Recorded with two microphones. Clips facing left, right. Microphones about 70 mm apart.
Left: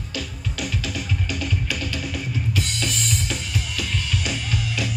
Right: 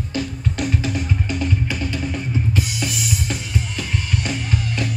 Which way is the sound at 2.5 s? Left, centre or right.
Centre.